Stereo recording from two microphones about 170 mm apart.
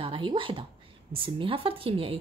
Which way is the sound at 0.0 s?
30° right (ahead or behind).